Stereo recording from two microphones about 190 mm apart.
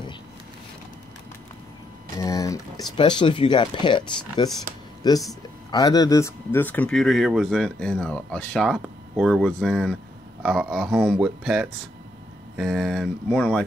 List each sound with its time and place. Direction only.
2.1 s speech: 15° left (ahead or behind)